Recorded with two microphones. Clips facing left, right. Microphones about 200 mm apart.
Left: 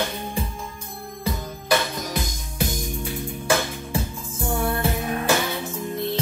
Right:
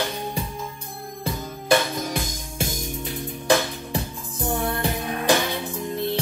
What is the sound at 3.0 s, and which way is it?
Music, 15° right (ahead or behind).